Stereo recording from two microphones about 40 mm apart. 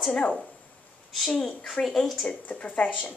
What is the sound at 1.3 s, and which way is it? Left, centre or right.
Speech, centre.